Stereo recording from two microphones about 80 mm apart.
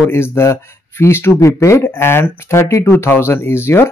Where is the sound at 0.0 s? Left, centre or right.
Left.